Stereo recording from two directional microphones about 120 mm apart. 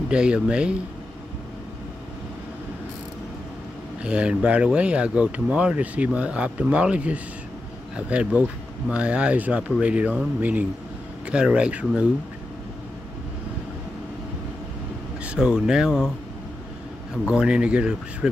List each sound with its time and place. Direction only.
0.1 s speech: 10° right (ahead or behind)
4.0 s speech: 10° right (ahead or behind)
15.2 s speech: 5° right (ahead or behind)
17.3 s speech: 10° right (ahead or behind)